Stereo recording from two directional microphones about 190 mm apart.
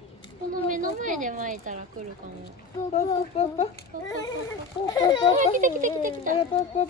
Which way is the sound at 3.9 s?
45° right (ahead or behind).